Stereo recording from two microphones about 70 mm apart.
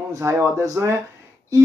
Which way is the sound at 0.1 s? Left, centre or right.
Right.